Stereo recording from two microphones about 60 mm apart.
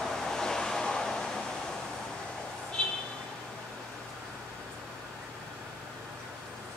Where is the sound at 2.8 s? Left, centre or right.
Centre.